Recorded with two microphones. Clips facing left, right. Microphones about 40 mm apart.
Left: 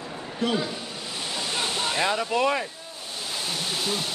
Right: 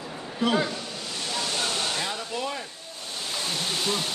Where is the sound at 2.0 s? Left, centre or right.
Left.